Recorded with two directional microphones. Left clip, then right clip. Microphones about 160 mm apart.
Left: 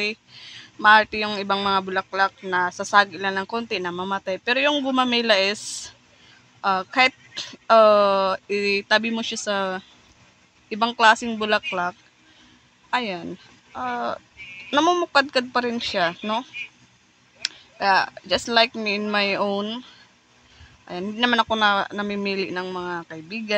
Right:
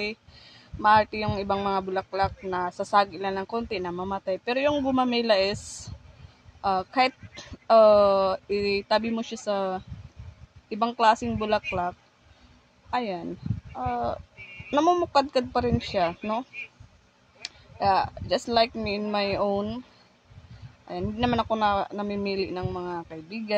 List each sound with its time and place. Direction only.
0.0 s speech: 10° right (ahead or behind)
20.8 s speech: 5° right (ahead or behind)